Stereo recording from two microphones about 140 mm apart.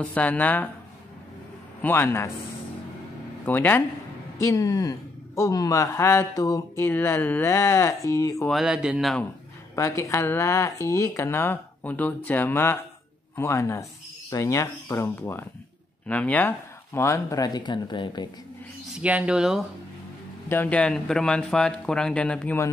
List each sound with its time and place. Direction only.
0.0 s speech: 10° left (ahead or behind)
1.8 s speech: 15° left (ahead or behind)
3.4 s speech: 15° left (ahead or behind)
4.4 s speech: 25° left (ahead or behind)
8.5 s speech: 5° right (ahead or behind)
9.8 s speech: 20° left (ahead or behind)
18.9 s speech: 10° right (ahead or behind)
20.4 s speech: 10° left (ahead or behind)